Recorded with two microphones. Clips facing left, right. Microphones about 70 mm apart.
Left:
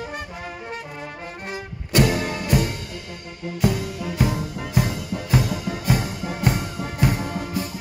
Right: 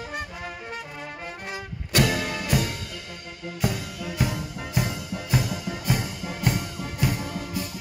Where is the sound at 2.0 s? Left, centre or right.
Left.